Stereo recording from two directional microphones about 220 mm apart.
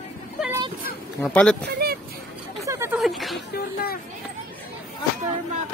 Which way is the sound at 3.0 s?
Centre (ahead or behind).